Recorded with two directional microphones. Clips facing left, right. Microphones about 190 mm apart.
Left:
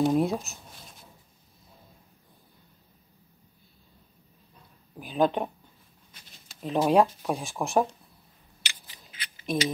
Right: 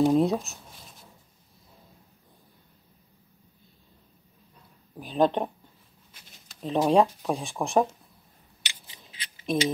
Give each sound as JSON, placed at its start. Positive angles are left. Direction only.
{"t": 0.1, "sound": "speech", "side_deg": 0}
{"t": 4.9, "sound": "speech", "side_deg": 0}
{"t": 6.6, "sound": "speech", "side_deg": 0}
{"t": 8.6, "sound": "scissors", "side_deg": -20}